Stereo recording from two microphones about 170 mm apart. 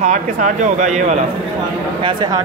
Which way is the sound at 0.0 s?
45° right (ahead or behind).